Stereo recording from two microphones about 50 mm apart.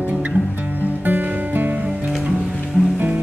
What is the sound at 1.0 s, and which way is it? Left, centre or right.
Music, right.